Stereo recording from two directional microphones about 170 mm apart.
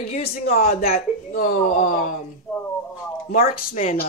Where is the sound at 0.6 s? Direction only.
60° left (ahead or behind).